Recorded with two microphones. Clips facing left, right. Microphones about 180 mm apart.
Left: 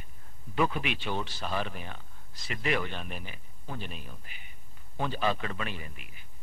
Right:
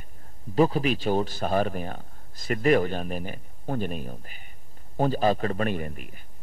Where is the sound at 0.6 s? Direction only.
35° right (ahead or behind).